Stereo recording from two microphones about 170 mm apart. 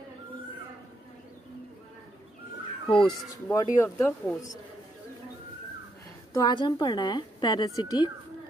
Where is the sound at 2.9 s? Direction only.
25° left (ahead or behind).